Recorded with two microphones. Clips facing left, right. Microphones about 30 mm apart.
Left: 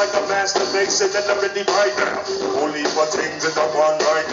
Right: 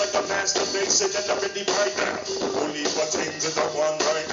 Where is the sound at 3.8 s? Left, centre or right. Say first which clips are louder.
Left 7 dB; left.